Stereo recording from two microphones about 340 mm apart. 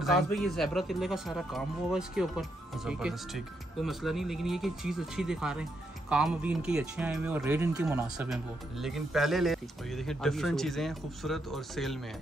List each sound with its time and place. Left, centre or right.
0.0 s speech: centre